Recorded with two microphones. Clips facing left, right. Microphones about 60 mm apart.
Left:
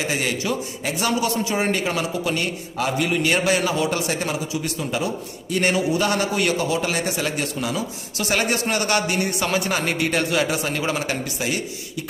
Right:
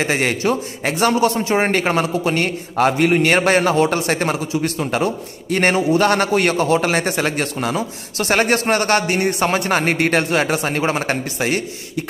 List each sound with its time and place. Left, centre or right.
0.0 s a man's voice: right